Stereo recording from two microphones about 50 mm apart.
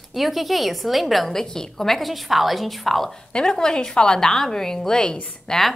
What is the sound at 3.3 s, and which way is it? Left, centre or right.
A woman's voice, centre.